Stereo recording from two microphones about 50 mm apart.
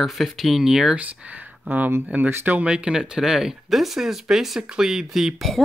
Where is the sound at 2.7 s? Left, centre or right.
Centre.